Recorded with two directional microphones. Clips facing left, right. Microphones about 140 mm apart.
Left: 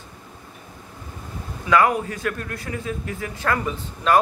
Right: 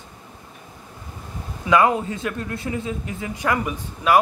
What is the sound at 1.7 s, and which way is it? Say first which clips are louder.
A man's voice: right 1 dB; 20° right (ahead or behind).